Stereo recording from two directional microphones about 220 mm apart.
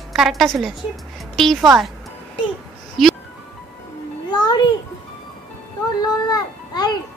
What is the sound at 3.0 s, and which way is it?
Speech, centre (ahead or behind).